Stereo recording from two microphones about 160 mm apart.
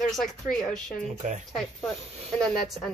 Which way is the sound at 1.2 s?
50° right (ahead or behind).